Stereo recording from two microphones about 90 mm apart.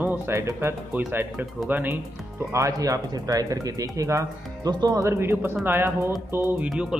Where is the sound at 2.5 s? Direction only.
35° right (ahead or behind).